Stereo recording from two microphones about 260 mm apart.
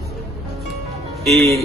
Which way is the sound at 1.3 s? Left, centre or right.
Centre.